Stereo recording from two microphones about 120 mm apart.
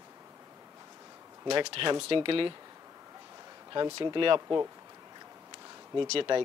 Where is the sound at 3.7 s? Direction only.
40° right (ahead or behind).